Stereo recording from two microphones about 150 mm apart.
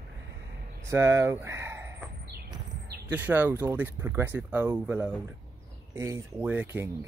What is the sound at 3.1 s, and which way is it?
Speech, 10° right (ahead or behind).